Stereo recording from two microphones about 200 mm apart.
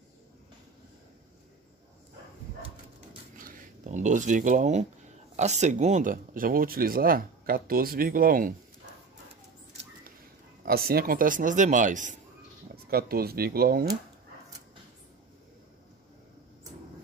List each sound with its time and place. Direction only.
3.3 s a sound: 40° right (ahead or behind)
5.3 s speech: 35° right (ahead or behind)
10.6 s a man's voice: 50° right (ahead or behind)